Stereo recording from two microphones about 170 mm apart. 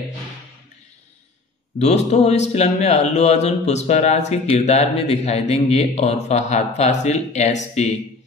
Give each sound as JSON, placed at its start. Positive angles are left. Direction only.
{"t": 1.8, "sound": "a man's voice", "side_deg": 40}